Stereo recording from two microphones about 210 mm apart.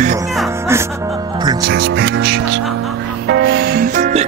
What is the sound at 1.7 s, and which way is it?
Speech, 50° right (ahead or behind).